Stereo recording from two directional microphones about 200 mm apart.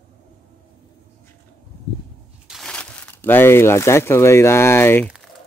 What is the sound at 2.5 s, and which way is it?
Crumpling, centre (ahead or behind).